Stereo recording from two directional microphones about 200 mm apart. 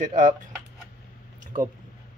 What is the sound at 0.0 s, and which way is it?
Speech, 40° right (ahead or behind).